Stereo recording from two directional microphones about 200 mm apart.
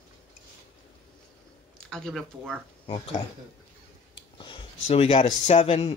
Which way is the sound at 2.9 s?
25° left (ahead or behind).